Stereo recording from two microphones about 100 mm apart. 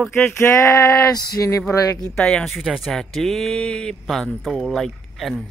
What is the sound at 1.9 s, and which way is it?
Speech, 5° left (ahead or behind).